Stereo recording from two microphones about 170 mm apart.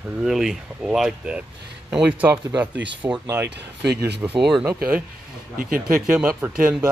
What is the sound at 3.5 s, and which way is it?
Speech, 75° right (ahead or behind).